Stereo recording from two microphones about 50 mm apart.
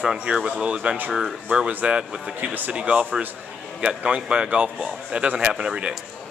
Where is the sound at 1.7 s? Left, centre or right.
Right; by 5.9 s centre.